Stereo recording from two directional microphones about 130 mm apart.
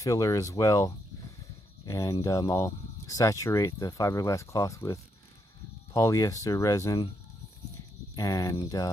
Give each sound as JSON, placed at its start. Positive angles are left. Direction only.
{"t": 0.0, "sound": "speech", "side_deg": 25}
{"t": 5.9, "sound": "speech", "side_deg": 25}
{"t": 8.2, "sound": "speech", "side_deg": 25}